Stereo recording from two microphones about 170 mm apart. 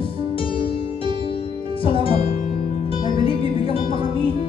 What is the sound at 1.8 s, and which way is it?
Speech, 30° left (ahead or behind).